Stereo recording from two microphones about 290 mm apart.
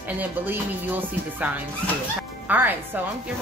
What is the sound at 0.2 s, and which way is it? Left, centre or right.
Speech, centre.